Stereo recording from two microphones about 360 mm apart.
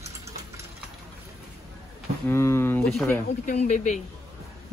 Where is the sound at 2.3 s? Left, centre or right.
Centre.